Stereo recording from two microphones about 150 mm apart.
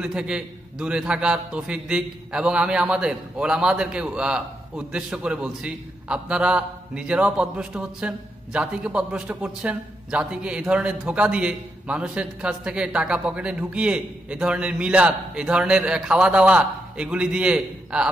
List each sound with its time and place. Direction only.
0.0 s a man's voice: 5° right (ahead or behind)